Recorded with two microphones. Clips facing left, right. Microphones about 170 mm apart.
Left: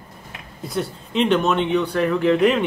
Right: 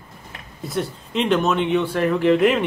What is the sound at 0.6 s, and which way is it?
Speech, centre (ahead or behind).